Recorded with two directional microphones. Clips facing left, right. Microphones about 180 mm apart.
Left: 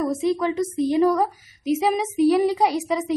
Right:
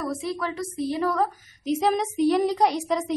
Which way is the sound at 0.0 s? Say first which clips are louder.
Left 7 dB; 20° left (ahead or behind).